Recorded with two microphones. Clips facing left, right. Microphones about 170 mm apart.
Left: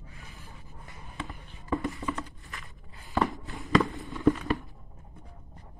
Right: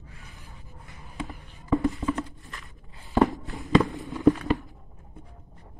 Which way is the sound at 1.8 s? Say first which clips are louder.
Right 7 dB; 20° right (ahead or behind).